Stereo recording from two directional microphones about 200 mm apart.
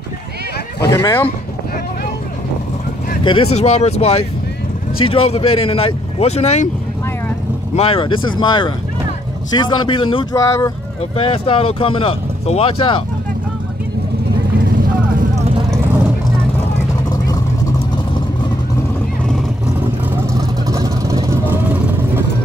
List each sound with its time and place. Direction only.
0.8 s speech: 20° left (ahead or behind)
3.3 s speech: 30° left (ahead or behind)
7.7 s speech: 30° left (ahead or behind)
20.1 s vehicle: 15° right (ahead or behind)